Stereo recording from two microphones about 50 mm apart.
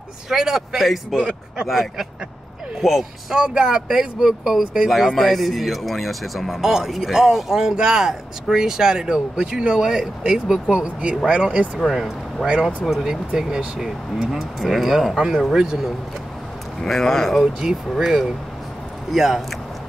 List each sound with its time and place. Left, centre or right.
0.3 s speech: centre
3.3 s speech: centre
10.7 s speech: right
12.4 s speech: centre
16.8 s speech: centre
17.6 s speech: centre